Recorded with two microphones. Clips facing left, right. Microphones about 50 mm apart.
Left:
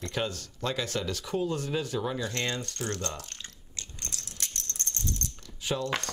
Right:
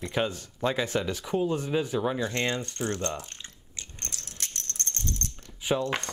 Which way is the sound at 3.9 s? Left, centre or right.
Right.